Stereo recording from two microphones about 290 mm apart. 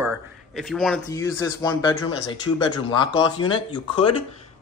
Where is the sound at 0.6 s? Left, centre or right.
Centre.